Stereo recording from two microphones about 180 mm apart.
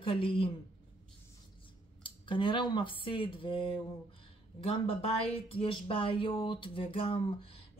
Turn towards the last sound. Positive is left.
turn(degrees=30)  # may be behind; listen again after turning